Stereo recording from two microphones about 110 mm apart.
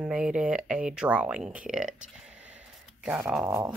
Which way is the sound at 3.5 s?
20° right (ahead or behind).